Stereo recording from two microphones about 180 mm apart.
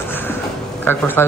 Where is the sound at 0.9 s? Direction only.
10° left (ahead or behind).